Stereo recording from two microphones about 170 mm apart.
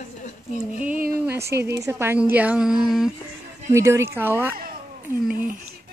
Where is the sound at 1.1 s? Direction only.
10° right (ahead or behind).